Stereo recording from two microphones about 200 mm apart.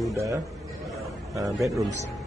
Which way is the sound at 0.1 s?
15° right (ahead or behind).